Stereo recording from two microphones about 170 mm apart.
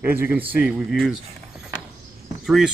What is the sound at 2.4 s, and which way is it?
Speech, centre (ahead or behind).